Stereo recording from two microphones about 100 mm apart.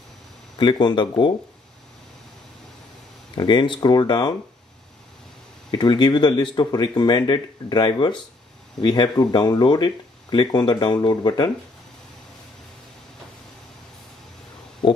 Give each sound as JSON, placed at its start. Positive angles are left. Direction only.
{"t": 0.6, "sound": "speech", "side_deg": 50}
{"t": 3.3, "sound": "speech", "side_deg": 50}
{"t": 5.7, "sound": "speech", "side_deg": 45}